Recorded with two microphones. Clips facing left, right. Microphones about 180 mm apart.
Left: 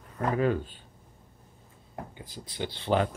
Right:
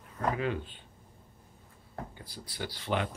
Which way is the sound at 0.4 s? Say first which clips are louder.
Left 6 dB; 45° left (ahead or behind).